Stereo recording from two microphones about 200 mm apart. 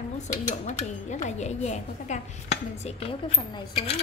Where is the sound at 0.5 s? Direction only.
35° left (ahead or behind).